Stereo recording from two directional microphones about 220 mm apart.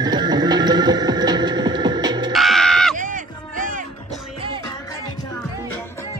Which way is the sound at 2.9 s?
35° right (ahead or behind).